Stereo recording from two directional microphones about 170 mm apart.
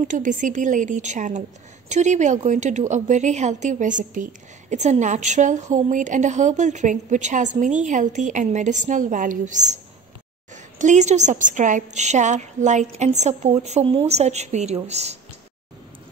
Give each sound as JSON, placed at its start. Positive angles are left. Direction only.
{"t": 0.1, "sound": "a woman's voice", "side_deg": -50}